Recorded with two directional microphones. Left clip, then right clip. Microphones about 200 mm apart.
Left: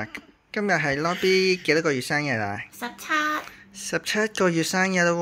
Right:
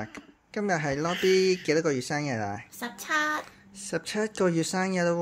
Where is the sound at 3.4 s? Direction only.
5° right (ahead or behind).